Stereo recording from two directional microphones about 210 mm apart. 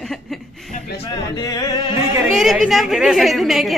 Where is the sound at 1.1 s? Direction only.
15° left (ahead or behind).